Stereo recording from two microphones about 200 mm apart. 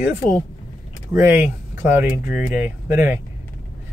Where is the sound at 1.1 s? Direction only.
10° right (ahead or behind).